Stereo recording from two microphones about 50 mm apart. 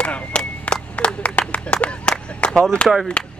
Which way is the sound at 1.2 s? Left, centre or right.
Left.